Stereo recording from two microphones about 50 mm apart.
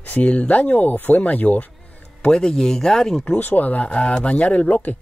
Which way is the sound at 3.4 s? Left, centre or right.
Left.